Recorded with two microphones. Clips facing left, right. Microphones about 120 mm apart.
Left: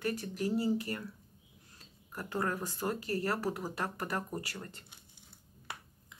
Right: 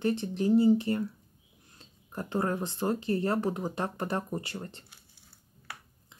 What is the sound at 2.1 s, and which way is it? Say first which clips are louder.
Speech: right 5 dB; 25° right (ahead or behind).